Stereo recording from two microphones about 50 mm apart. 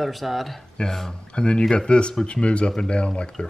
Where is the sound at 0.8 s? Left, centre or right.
Centre.